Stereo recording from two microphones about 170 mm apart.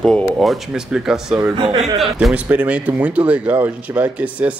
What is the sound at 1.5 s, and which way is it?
Speech, 30° right (ahead or behind).